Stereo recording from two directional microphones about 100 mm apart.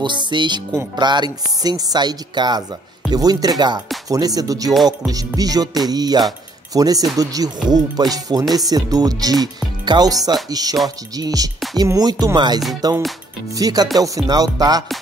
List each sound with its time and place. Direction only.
0.0 s speech: 50° right (ahead or behind)